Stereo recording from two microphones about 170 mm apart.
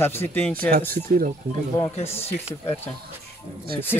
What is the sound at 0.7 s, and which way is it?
Speech, 60° right (ahead or behind).